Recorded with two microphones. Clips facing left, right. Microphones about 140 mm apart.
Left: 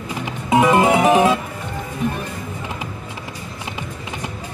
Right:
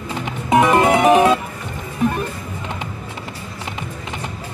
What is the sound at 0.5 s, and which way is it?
Music, 20° left (ahead or behind).